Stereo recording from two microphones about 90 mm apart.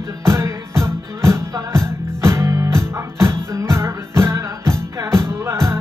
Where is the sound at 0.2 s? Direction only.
30° right (ahead or behind).